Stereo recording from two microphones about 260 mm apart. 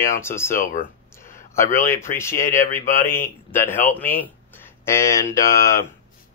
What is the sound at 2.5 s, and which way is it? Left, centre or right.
Speech, left.